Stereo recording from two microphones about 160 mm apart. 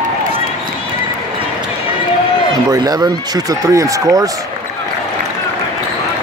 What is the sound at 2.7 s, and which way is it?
Speech, 25° right (ahead or behind).